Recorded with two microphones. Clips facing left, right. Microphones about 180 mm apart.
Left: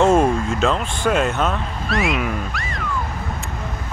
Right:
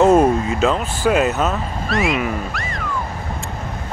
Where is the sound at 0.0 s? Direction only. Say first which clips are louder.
Right 3 dB; 5° right (ahead or behind).